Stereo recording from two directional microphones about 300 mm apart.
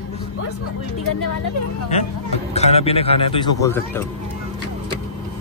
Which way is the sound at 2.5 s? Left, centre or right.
Left.